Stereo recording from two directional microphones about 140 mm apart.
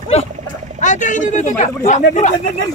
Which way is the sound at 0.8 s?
65° left (ahead or behind).